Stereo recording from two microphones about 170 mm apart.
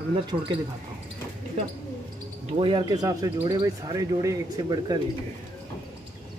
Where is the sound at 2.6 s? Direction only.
30° right (ahead or behind).